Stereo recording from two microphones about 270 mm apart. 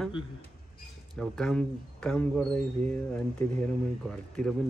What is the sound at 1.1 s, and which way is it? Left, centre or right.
Speech, centre.